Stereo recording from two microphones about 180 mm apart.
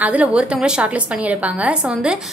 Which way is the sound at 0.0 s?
5° right (ahead or behind).